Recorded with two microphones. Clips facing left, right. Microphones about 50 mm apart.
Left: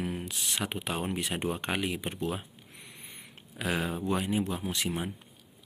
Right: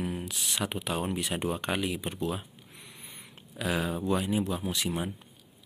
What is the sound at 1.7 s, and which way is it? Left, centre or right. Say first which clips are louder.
Speech: right 1 dB; centre.